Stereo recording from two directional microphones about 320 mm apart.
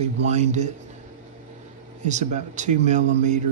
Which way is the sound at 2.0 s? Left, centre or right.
Right.